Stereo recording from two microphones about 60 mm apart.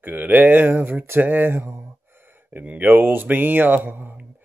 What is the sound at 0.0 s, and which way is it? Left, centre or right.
Speech, right.